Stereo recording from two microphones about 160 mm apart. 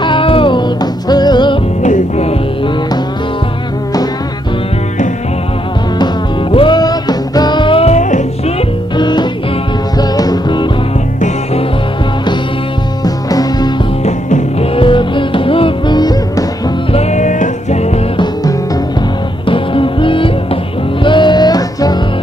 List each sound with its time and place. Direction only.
0.0 s music: 30° left (ahead or behind)
1.8 s music: 50° left (ahead or behind)
6.5 s music: 30° left (ahead or behind); by 8.6 s 45° left (ahead or behind)
8.9 s music: 30° left (ahead or behind)
11.1 s music: 50° left (ahead or behind)
13.0 s music: 25° left (ahead or behind)
14.0 s music: 40° left (ahead or behind); by 16.7 s 25° left (ahead or behind)
16.9 s music: 45° left (ahead or behind)
19.4 s music: 35° left (ahead or behind)